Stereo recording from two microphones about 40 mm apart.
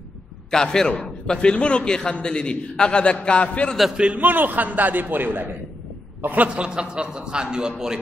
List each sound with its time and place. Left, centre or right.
0.5 s a man's voice: centre
3.9 s a man's voice: right
4.2 s a man's voice: right
6.2 s a man's voice: right
6.5 s a man's voice: right